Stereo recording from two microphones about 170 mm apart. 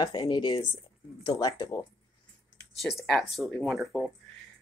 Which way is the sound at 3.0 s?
5° left (ahead or behind).